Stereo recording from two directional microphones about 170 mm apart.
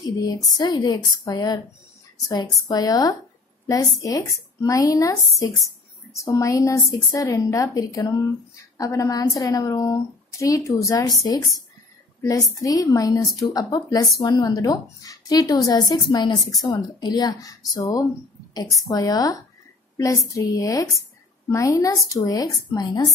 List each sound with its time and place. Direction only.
0.0 s a woman's voice: 20° left (ahead or behind)